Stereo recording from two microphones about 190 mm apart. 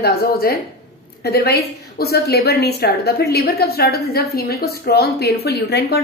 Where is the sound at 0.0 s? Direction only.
55° left (ahead or behind).